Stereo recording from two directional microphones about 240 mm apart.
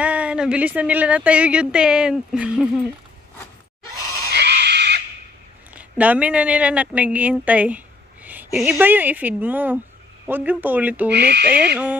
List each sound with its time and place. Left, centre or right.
0.0 s a woman's voice: centre
4.3 s a sound: right
5.7 s a woman's voice: centre